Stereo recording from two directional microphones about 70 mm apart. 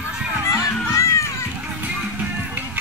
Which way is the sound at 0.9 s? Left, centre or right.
Left.